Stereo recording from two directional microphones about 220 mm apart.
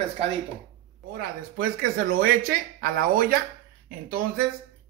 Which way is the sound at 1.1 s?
45° right (ahead or behind).